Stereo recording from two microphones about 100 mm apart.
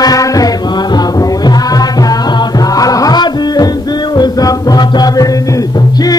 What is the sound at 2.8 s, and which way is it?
Music, 35° left (ahead or behind).